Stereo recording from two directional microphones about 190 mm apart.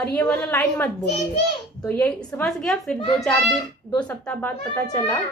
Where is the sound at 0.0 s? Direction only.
10° left (ahead or behind).